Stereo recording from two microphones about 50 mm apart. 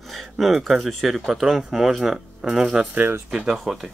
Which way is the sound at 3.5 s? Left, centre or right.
Centre.